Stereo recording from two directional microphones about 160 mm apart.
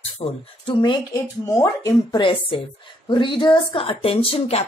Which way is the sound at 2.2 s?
30° left (ahead or behind).